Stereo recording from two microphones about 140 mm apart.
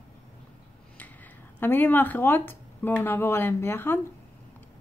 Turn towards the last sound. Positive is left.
turn(degrees=15)  # may be behind; listen again after turning